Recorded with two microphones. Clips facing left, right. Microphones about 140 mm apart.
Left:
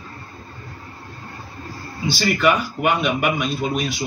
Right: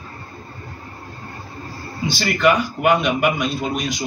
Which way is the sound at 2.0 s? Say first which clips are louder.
Right 1 dB; centre (ahead or behind).